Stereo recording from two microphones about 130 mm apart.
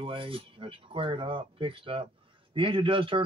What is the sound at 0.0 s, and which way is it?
Speech, 40° right (ahead or behind).